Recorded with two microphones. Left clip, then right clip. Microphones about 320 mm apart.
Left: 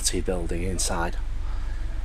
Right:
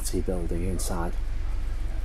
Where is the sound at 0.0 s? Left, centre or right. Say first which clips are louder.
Left 3 dB; left.